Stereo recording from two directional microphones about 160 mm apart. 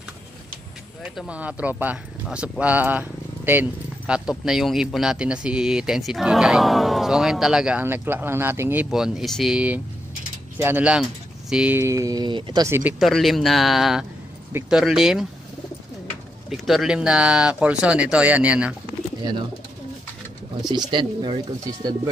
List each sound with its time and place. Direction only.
1.0 s speech: centre (ahead or behind)
8.9 s speech: 5° right (ahead or behind); by 12.6 s 30° right (ahead or behind)
12.6 s speech: 15° right (ahead or behind)
13.0 s speech: centre (ahead or behind)
16.4 s speech: centre (ahead or behind)
20.9 s speech: 30° right (ahead or behind)